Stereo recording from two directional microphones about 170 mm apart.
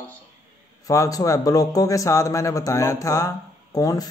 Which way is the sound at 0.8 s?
20° left (ahead or behind).